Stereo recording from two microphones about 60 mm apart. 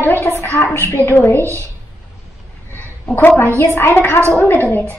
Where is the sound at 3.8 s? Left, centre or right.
Left.